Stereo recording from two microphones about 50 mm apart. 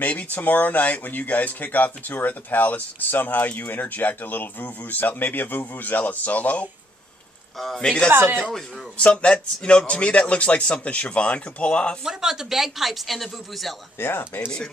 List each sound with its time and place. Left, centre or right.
0.0 s speech: left
7.5 s speech: centre
7.8 s speech: centre
8.1 s speech: right
8.9 s a man's voice: left
12.0 s speech: centre
13.9 s speech: left